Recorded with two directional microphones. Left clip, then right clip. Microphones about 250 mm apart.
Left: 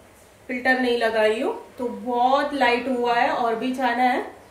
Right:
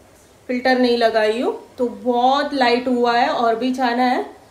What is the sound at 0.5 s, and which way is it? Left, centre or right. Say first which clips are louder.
A woman's voice: right 4 dB; centre.